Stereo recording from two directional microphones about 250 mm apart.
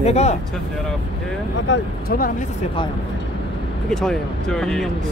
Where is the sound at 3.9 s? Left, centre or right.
Centre.